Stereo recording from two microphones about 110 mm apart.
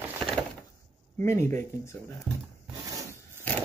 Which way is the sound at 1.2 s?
25° left (ahead or behind).